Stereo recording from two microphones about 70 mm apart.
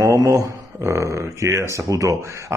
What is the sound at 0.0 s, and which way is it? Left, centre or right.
A man's voice, right.